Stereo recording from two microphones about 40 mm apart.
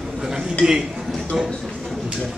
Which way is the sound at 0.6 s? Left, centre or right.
Centre.